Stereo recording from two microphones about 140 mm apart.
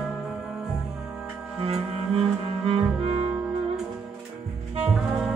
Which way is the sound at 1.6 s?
45° right (ahead or behind).